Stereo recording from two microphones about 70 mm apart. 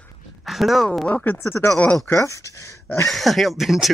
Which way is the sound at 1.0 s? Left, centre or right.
Left.